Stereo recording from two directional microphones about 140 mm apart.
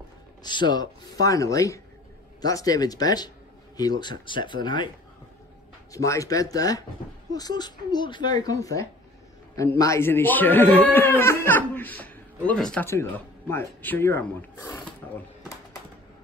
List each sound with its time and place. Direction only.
0.4 s speech: 30° left (ahead or behind)
5.9 s speech: 25° left (ahead or behind); by 12.8 s 5° left (ahead or behind)
12.8 s speech: 20° left (ahead or behind)